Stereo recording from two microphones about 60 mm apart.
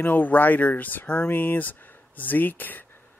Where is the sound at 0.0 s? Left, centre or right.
Left.